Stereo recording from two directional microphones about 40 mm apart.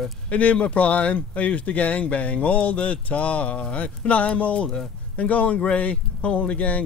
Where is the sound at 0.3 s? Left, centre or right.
Left.